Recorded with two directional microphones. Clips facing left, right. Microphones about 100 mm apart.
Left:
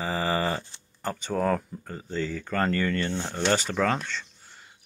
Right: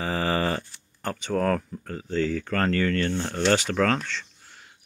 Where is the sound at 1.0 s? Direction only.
5° left (ahead or behind).